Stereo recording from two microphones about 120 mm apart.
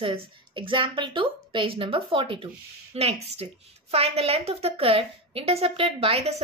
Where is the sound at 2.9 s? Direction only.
55° right (ahead or behind).